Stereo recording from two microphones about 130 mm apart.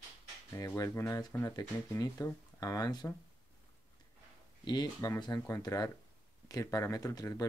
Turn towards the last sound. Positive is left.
turn(degrees=25)  # may be behind; listen again after turning